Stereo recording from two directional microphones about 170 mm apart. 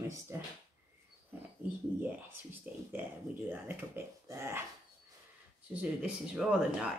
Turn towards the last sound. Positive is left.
turn(degrees=-5)  # may be behind; listen again after turning